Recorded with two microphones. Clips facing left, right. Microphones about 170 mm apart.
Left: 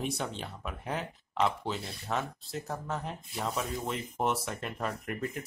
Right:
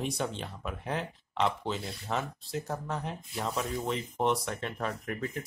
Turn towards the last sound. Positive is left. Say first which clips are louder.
# even
turn(degrees=0)  # may be behind; listen again after turning